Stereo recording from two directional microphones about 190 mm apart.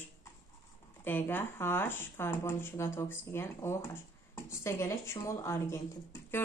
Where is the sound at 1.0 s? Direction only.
10° left (ahead or behind).